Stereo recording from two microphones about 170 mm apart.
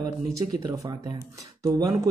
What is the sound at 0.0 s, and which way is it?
Speech, 20° right (ahead or behind).